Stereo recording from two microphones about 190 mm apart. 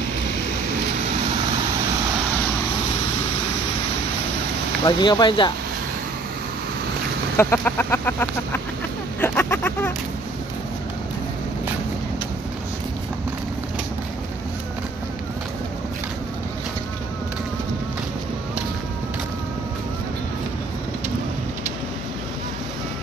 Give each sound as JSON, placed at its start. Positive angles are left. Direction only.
{"t": 4.8, "sound": "speech", "side_deg": 25}
{"t": 7.3, "sound": "chicken", "side_deg": 10}